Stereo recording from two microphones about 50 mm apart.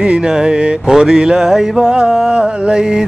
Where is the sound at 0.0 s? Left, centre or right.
Centre.